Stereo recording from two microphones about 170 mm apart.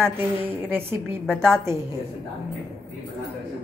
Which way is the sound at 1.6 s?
15° right (ahead or behind).